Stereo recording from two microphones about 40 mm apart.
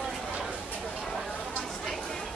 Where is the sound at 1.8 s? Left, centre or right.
Centre.